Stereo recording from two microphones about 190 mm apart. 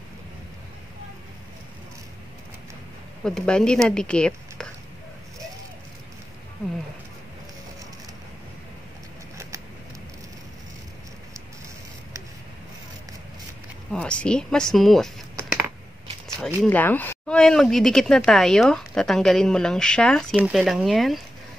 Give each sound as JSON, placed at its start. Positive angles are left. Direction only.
{"t": 3.3, "sound": "a woman's voice", "side_deg": 5}
{"t": 13.9, "sound": "speech", "side_deg": 5}
{"t": 16.3, "sound": "speech", "side_deg": 10}